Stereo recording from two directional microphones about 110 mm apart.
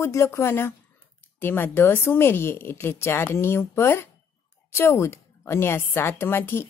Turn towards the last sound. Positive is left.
turn(degrees=20)  # may be behind; listen again after turning